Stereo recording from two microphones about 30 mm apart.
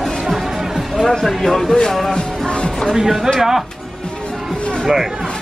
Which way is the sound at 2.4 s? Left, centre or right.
Left.